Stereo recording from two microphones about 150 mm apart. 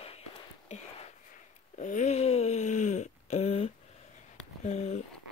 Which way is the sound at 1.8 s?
55° left (ahead or behind).